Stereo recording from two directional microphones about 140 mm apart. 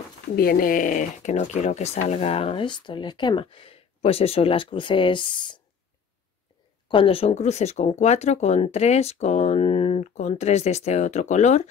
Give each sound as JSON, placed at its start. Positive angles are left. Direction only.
{"t": 0.4, "sound": "speech", "side_deg": 90}
{"t": 6.9, "sound": "speech", "side_deg": 40}